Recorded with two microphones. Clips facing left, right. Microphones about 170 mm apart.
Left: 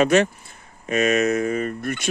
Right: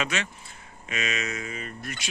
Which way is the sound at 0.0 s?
45° left (ahead or behind).